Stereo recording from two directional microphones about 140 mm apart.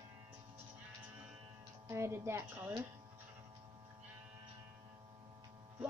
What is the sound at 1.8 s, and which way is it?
Speech, 20° right (ahead or behind).